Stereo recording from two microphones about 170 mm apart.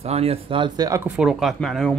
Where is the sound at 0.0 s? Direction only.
35° right (ahead or behind); by 1.0 s 20° right (ahead or behind).